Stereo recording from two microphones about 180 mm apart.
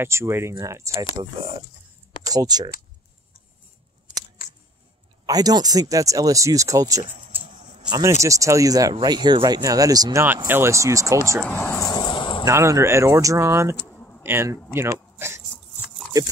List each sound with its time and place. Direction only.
0.0 s speech: 15° right (ahead or behind)
2.2 s speech: 20° right (ahead or behind)
5.2 s speech: 20° right (ahead or behind)
11.4 s speech: 10° left (ahead or behind)
11.9 s a sound: 25° left (ahead or behind)
12.4 s speech: 15° right (ahead or behind)
13.9 s bee: 10° left (ahead or behind)
14.2 s speech: 15° right (ahead or behind)
15.8 s a sound: centre (ahead or behind)